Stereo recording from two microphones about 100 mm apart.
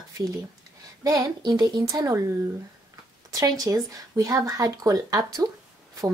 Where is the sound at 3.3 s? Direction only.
35° right (ahead or behind).